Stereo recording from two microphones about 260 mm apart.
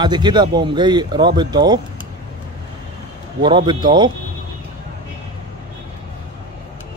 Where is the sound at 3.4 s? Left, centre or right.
Centre.